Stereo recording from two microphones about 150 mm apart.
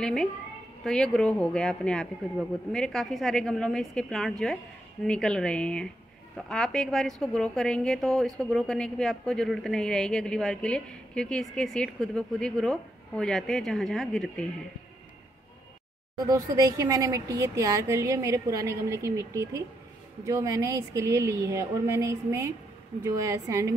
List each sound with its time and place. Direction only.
0.0 s a woman's voice: 5° left (ahead or behind)
16.3 s a woman's voice: 20° right (ahead or behind)